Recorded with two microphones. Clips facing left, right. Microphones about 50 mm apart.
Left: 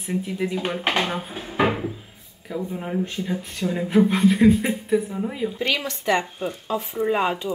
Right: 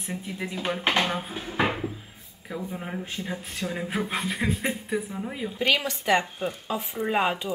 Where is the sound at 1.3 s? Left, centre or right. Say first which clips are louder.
Left 4 dB; centre.